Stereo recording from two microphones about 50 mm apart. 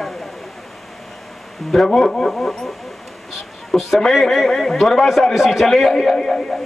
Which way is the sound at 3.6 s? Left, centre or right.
Centre.